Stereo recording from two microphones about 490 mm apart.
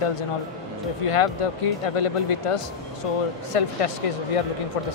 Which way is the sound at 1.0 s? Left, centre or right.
Left.